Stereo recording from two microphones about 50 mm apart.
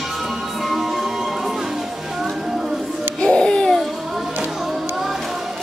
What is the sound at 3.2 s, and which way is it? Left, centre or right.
Babbling, centre.